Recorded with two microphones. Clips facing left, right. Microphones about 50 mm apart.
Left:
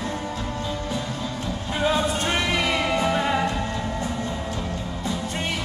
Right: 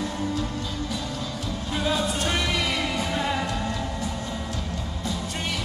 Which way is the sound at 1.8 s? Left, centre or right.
Left.